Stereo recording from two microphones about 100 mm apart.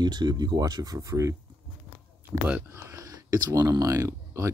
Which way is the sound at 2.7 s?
30° right (ahead or behind).